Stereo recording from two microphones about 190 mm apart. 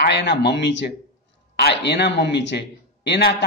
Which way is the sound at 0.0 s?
60° left (ahead or behind).